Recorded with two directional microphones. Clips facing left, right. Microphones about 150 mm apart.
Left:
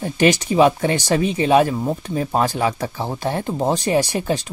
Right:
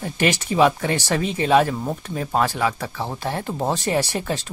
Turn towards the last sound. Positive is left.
turn(degrees=15)  # may be behind; listen again after turning